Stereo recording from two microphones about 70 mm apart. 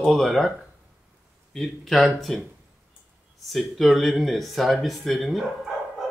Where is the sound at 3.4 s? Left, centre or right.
Centre.